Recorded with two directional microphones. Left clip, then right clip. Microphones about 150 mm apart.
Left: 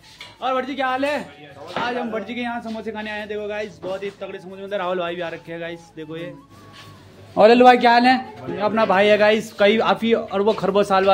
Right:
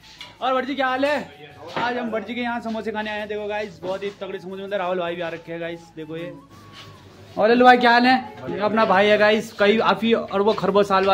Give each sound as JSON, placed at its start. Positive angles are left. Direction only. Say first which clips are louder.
{"t": 0.4, "sound": "a man's voice", "louder": "right 1 dB", "side_deg": -10}
{"t": 4.7, "sound": "a man's voice", "louder": "left 1 dB", "side_deg": 5}
{"t": 7.3, "sound": "a man's voice", "louder": "left 5 dB", "side_deg": 20}
{"t": 7.6, "sound": "a man's voice", "louder": "left 1 dB", "side_deg": 5}